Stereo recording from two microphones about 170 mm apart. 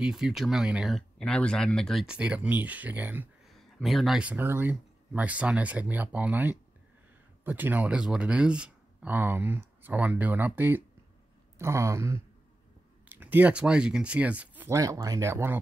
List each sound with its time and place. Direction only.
0.0 s speech: 5° right (ahead or behind)
3.4 s speech: centre (ahead or behind)